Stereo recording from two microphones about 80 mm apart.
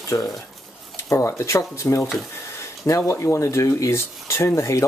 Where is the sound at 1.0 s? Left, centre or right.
Left.